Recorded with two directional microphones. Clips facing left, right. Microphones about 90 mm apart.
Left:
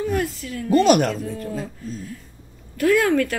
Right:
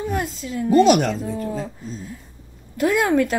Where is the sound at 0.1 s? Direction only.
20° right (ahead or behind).